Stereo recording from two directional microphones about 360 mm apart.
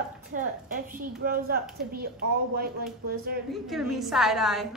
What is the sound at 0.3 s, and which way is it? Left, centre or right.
A woman's voice, right.